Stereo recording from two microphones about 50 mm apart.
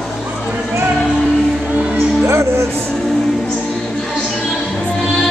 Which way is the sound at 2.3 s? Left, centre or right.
Right.